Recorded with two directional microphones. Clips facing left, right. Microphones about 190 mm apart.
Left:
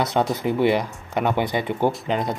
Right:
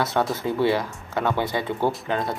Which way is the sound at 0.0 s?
20° left (ahead or behind).